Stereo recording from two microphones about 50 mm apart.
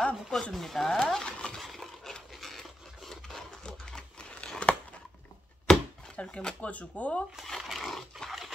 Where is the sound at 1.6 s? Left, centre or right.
Centre.